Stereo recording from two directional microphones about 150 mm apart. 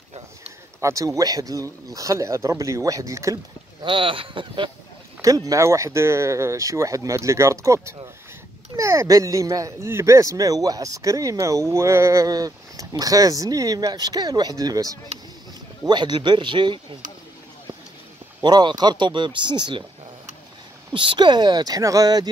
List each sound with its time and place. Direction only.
0.7 s speech: 20° right (ahead or behind)
3.8 s speech: 35° right (ahead or behind)
5.2 s speech: 20° right (ahead or behind)
18.4 s speech: 30° right (ahead or behind)
20.9 s speech: 35° right (ahead or behind)